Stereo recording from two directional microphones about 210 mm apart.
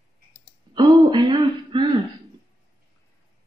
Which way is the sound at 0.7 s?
20° right (ahead or behind).